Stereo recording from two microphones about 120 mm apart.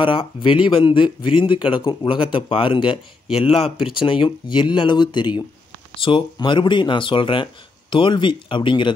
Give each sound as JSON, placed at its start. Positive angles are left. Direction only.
{"t": 0.0, "sound": "speech", "side_deg": 45}